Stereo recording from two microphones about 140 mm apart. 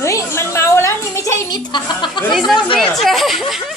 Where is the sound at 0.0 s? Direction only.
20° left (ahead or behind).